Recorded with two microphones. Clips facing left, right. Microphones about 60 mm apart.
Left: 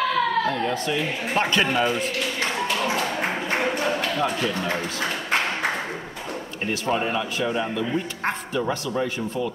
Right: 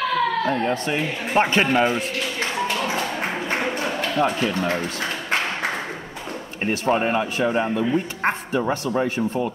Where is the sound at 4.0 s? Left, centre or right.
Right.